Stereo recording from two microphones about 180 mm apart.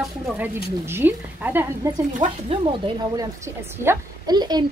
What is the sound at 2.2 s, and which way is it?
A woman's voice, 30° right (ahead or behind).